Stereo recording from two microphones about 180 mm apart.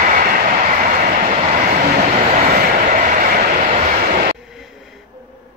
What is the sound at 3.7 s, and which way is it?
Vehicle, 40° right (ahead or behind).